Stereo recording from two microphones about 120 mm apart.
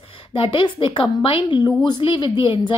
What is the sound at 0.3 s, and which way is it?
A woman's voice, 45° left (ahead or behind).